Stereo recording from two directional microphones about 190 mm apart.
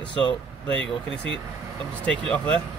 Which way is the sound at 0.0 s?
25° left (ahead or behind).